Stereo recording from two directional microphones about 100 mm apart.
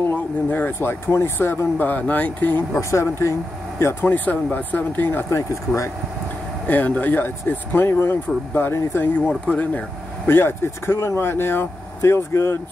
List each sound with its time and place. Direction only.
0.1 s speech: 20° left (ahead or behind)
2.9 s speech: 30° left (ahead or behind)
6.7 s speech: 15° left (ahead or behind)